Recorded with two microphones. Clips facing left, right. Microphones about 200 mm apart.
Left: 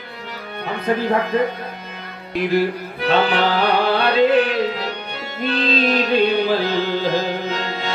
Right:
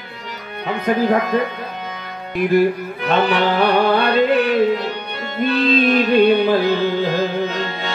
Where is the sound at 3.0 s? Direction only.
55° right (ahead or behind).